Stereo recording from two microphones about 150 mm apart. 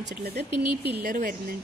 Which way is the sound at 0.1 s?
90° right.